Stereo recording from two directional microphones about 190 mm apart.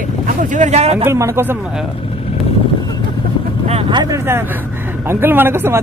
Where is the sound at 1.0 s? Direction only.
15° right (ahead or behind).